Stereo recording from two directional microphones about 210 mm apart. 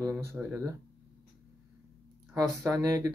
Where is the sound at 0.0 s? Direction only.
10° right (ahead or behind).